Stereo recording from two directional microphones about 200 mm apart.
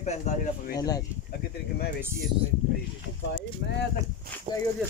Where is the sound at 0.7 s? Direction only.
20° left (ahead or behind).